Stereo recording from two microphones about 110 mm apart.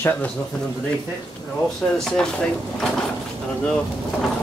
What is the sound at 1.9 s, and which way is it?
Speech, 5° left (ahead or behind).